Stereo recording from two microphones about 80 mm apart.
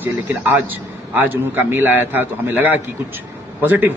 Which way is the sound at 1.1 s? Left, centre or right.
Right.